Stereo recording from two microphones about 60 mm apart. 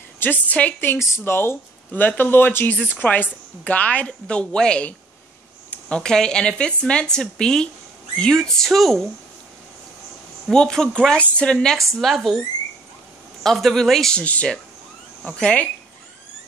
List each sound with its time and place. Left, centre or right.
0.2 s a woman's voice: left
0.9 s speech: left
1.9 s a woman's voice: left; by 9.1 s centre
10.5 s speech: centre
13.4 s speech: centre
14.1 s a woman's voice: left